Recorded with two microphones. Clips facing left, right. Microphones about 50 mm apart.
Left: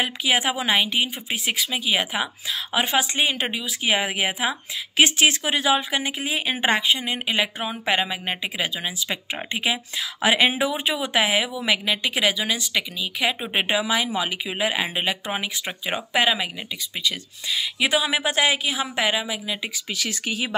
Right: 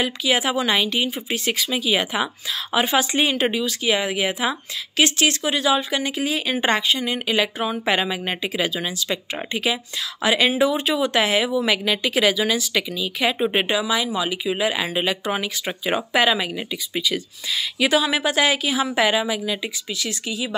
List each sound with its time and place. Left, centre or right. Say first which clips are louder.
0.3 s speech: right 1 dB; centre
3.8 s speech: even; left
7.5 s speech: right 2 dB; centre
9.0 s speech: right 2 dB; centre
10.2 s speech: right 2 dB; left; by 13.7 s centre
13.7 s speech: right 1 dB; left
14.7 s speech: right 2 dB; centre
15.6 s speech: right 4 dB; centre
19.6 s speech: right 1 dB; left